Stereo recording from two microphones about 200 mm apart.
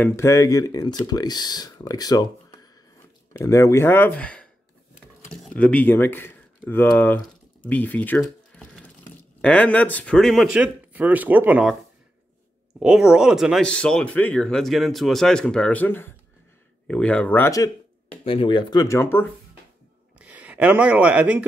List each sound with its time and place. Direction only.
0.0 s speech: 15° left (ahead or behind)
7.2 s a sound: 5° left (ahead or behind)
9.4 s speech: 5° left (ahead or behind)
12.7 s speech: 5° right (ahead or behind); by 17.6 s 15° left (ahead or behind)
18.2 s speech: 25° left (ahead or behind)
20.2 s speech: 5° right (ahead or behind)